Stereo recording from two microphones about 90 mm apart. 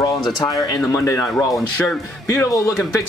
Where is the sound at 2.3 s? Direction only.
35° left (ahead or behind).